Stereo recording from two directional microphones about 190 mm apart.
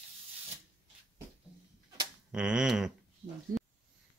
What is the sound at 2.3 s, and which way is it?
Speech, 5° right (ahead or behind).